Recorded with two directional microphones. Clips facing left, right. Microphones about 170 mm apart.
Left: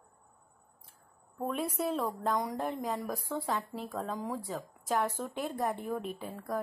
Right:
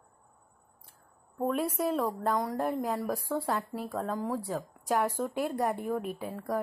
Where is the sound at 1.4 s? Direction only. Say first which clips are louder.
Right 4 dB; 10° right (ahead or behind).